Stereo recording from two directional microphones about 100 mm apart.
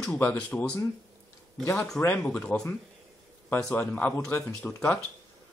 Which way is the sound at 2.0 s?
15° left (ahead or behind).